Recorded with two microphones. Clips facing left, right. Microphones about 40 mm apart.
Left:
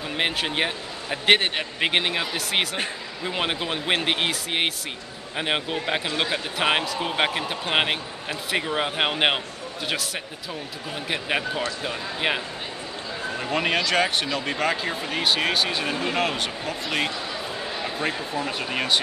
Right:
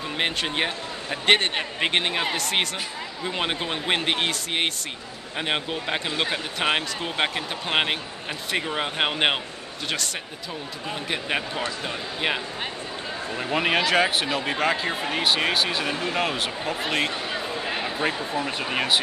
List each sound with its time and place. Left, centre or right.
0.2 s speech: centre
11.1 s speech: centre
13.4 s speech: centre
17.3 s a sound: right
17.8 s speech: centre